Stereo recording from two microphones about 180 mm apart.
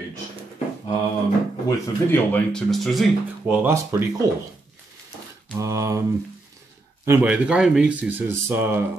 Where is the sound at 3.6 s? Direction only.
15° right (ahead or behind).